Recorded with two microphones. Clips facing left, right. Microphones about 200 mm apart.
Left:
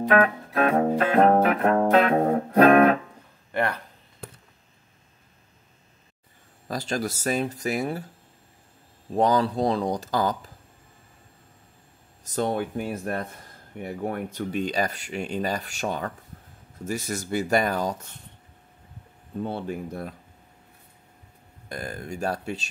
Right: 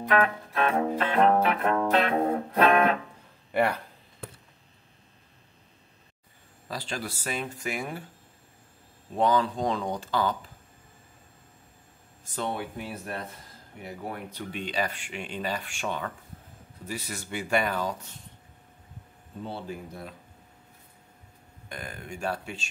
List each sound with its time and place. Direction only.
0.1 s music: 40° left (ahead or behind)
3.5 s speech: 10° right (ahead or behind)
6.7 s speech: 45° left (ahead or behind)
9.1 s speech: 40° left (ahead or behind)
12.3 s speech: 40° left (ahead or behind)
19.4 s speech: 55° left (ahead or behind)
21.6 s speech: 40° left (ahead or behind)